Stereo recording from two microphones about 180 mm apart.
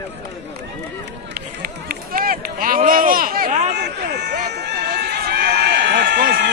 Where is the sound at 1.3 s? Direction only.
50° right (ahead or behind).